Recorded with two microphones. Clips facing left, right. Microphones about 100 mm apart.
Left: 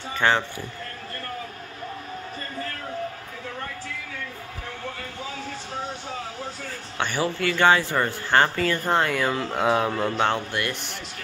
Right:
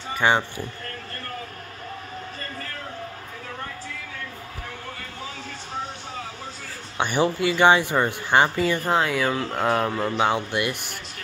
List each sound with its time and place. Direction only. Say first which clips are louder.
0.1 s speech: right 1 dB; 15° right (ahead or behind)
7.0 s speech: right 4 dB; 15° right (ahead or behind)
8.8 s speech: even; 5° right (ahead or behind)